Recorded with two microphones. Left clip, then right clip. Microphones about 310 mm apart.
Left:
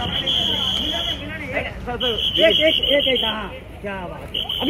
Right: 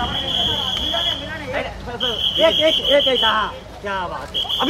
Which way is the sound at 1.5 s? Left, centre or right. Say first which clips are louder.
Left 1 dB; centre.